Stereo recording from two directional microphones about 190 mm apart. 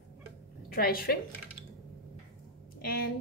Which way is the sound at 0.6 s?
50° left (ahead or behind).